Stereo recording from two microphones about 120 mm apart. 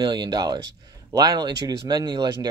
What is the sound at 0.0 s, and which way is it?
Speech, 35° right (ahead or behind).